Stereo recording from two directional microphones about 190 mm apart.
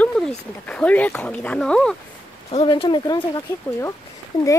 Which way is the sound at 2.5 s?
30° left (ahead or behind).